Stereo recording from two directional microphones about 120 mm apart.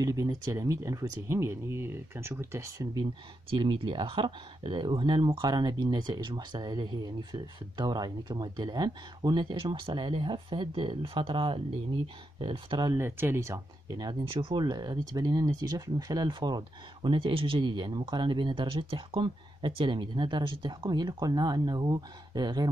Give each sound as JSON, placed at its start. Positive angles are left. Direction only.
{"t": 0.0, "sound": "speech", "side_deg": -30}
{"t": 3.4, "sound": "speech", "side_deg": -40}
{"t": 12.9, "sound": "speech", "side_deg": -20}
{"t": 14.3, "sound": "speech", "side_deg": -45}